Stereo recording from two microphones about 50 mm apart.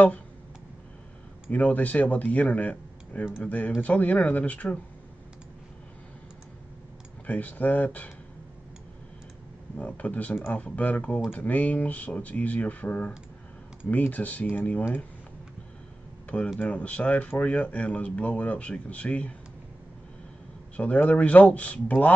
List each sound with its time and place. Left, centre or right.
1.5 s speech: left
7.2 s speech: left
9.8 s speech: left
16.5 s speech: left
20.7 s speech: left